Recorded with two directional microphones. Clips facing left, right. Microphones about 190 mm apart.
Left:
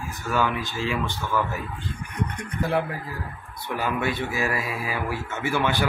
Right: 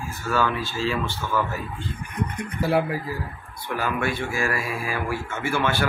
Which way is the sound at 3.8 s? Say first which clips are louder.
Even; 20° left (ahead or behind).